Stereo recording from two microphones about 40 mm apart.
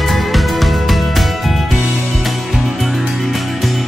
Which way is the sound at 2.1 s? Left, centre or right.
Centre.